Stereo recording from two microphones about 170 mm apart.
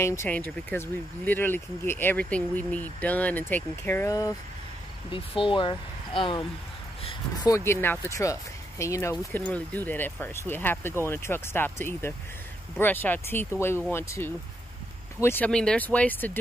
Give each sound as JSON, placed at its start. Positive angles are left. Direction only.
{"t": 0.0, "sound": "speech", "side_deg": 15}
{"t": 5.1, "sound": "speech", "side_deg": 30}
{"t": 7.4, "sound": "speech", "side_deg": 15}